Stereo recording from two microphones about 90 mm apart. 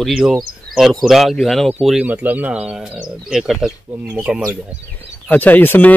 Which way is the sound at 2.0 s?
20° right (ahead or behind).